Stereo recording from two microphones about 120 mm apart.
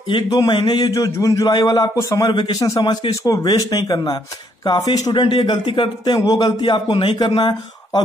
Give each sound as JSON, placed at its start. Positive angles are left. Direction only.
{"t": 0.1, "sound": "speech", "side_deg": 40}
{"t": 2.2, "sound": "speech", "side_deg": 40}